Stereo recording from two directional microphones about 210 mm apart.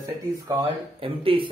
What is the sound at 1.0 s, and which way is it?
Speech, 25° right (ahead or behind).